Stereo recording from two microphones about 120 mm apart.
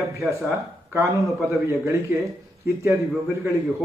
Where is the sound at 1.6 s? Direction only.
25° right (ahead or behind).